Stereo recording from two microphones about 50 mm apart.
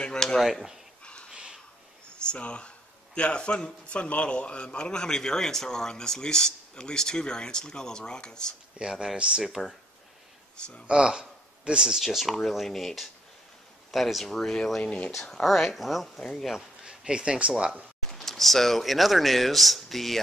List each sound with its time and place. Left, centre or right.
0.0 s dishes: centre
0.4 s speech: centre
1.0 s whispering: left
1.3 s a sound: centre
2.1 s a man's voice: centre
8.7 s speech: centre
9.4 s speech: centre
10.9 s speech: centre
12.0 s speech: centre
14.8 s speech: left
15.2 s speech: centre
16.2 s a man's voice: centre
16.8 s speech: centre
18.1 s speech: centre